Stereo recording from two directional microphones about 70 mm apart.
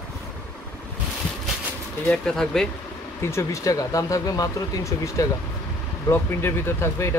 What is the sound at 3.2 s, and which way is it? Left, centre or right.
Speech, left.